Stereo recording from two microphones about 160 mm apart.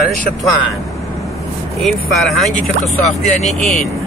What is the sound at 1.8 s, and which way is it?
Speech, centre (ahead or behind).